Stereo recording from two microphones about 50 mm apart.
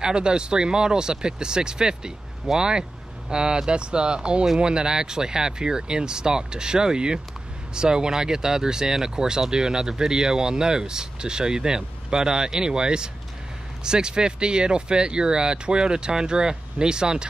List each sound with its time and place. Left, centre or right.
0.0 s speech: centre